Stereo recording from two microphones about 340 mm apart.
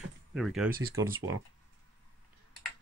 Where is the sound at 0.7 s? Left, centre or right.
Right.